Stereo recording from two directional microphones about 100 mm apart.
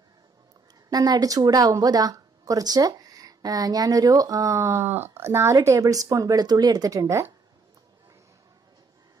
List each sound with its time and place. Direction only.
0.8 s speech: 40° right (ahead or behind)